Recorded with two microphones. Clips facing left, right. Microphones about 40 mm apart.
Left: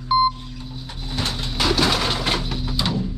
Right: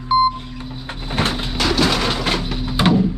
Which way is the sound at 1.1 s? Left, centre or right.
Right.